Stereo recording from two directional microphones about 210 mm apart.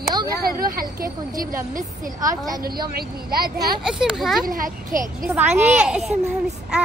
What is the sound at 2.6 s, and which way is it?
Speech, 45° right (ahead or behind).